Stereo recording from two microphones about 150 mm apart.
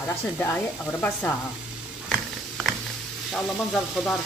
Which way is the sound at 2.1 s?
Centre (ahead or behind).